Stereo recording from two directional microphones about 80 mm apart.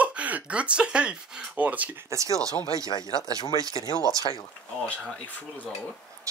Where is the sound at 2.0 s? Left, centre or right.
Right.